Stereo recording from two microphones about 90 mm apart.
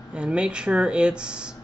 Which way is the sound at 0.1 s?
10° right (ahead or behind).